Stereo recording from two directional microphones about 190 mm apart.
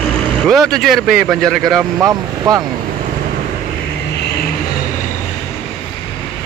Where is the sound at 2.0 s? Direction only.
20° right (ahead or behind).